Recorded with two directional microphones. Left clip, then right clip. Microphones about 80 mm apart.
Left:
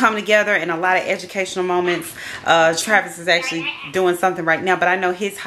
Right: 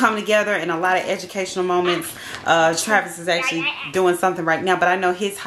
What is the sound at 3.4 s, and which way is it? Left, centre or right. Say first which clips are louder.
Speech: right 1 dB; right.